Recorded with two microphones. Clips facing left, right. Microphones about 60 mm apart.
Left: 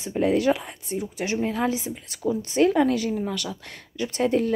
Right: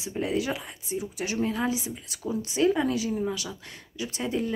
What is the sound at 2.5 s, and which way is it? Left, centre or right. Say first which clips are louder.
Speech: left 4 dB; left.